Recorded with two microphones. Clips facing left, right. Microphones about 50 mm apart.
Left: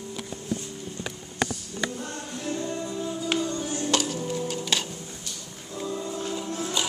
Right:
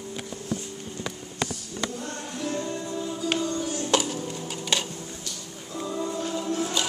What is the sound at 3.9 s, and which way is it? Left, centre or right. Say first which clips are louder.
Stir: right 2 dB; centre.